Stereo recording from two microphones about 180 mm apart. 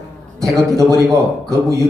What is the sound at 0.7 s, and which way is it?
A man's voice, 20° right (ahead or behind).